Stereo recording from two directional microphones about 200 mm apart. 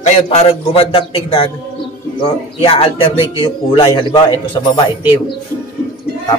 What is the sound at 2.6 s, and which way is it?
Speech, 30° left (ahead or behind).